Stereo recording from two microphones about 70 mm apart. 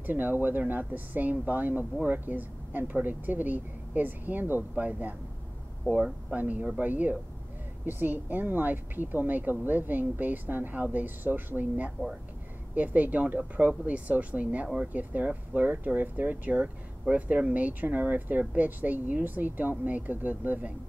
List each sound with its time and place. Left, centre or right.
0.0 s speech: right